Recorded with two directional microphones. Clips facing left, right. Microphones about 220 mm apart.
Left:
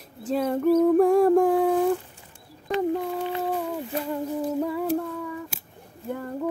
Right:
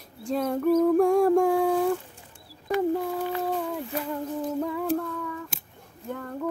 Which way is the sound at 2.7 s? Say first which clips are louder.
Even; 20° left (ahead or behind).